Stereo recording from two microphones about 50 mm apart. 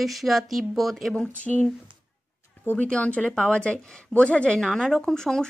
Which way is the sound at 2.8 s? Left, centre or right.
Left.